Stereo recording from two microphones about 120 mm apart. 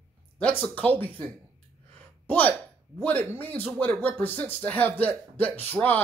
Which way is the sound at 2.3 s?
15° left (ahead or behind).